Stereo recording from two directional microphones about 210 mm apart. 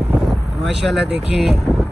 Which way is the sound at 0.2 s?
Centre (ahead or behind).